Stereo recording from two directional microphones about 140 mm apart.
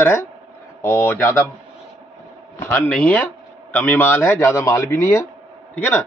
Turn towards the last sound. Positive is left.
turn(degrees=15)  # may be behind; listen again after turning